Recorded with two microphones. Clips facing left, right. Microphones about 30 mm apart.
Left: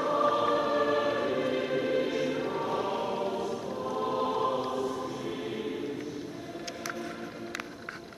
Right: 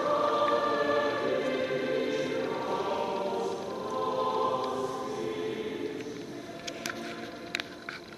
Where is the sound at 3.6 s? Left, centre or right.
Centre.